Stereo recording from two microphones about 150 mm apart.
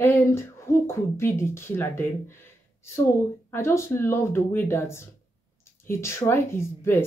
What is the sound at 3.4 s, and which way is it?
Speech, 15° left (ahead or behind).